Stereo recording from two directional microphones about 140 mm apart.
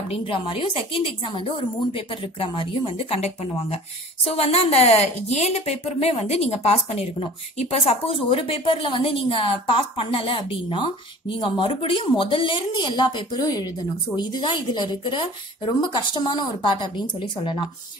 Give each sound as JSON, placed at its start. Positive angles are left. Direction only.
{"t": 0.1, "sound": "speech", "side_deg": 40}